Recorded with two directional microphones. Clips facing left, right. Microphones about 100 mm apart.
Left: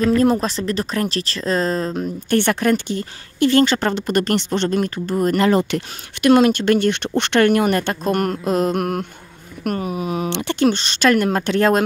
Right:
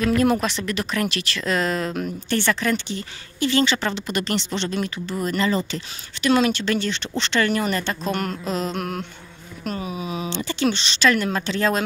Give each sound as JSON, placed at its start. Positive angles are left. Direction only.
{"t": 0.2, "sound": "speech", "side_deg": 35}
{"t": 2.2, "sound": "speech", "side_deg": 55}
{"t": 6.2, "sound": "speech", "side_deg": 50}